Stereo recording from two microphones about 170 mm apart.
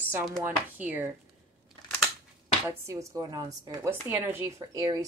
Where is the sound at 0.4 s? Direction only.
10° right (ahead or behind).